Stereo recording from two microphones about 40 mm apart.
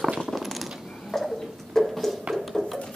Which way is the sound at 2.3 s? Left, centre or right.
Centre.